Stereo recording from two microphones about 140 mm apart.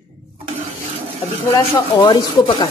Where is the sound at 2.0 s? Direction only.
35° left (ahead or behind).